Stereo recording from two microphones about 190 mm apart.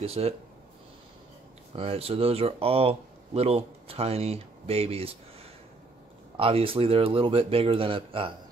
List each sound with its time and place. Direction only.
0.0 s speech: 30° right (ahead or behind)
1.8 s speech: 30° right (ahead or behind)